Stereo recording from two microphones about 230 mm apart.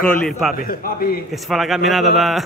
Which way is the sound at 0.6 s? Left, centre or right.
Left.